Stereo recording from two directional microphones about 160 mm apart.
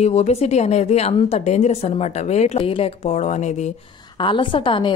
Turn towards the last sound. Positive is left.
turn(degrees=30)  # may be behind; listen again after turning